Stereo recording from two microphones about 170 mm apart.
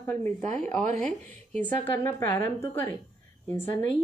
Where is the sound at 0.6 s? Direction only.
45° right (ahead or behind).